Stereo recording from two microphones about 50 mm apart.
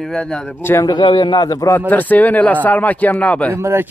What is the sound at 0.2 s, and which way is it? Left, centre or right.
Speech, centre.